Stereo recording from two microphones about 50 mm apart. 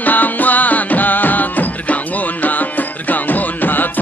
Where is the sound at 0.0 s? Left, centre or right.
Left.